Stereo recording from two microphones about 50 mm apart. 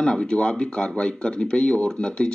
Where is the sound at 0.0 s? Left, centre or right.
Centre.